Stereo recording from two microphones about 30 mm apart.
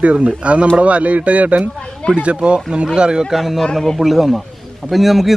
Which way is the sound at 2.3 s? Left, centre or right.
Right.